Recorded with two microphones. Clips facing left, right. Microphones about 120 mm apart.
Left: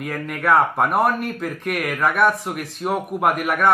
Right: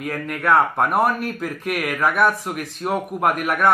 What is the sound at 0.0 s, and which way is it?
A man's voice, centre (ahead or behind).